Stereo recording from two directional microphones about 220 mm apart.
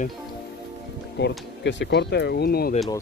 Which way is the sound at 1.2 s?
50° left (ahead or behind).